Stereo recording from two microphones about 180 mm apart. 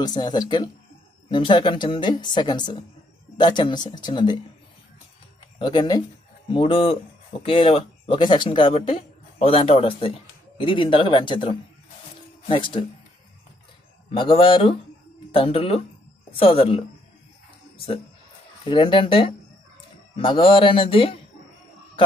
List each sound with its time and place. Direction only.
0.0 s speech: 20° left (ahead or behind)
5.6 s speech: 25° left (ahead or behind)
14.1 s speech: 30° left (ahead or behind)
18.6 s speech: 30° left (ahead or behind)